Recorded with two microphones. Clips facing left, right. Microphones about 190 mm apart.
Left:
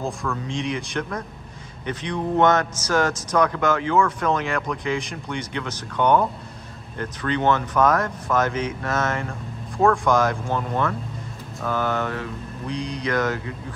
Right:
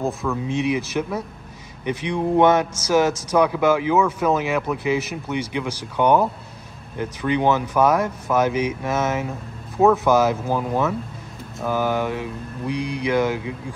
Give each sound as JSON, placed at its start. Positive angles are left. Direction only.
{"t": 0.0, "sound": "speech", "side_deg": -5}